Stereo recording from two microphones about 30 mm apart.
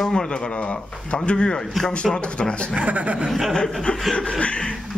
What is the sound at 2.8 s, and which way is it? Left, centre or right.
Speech, right.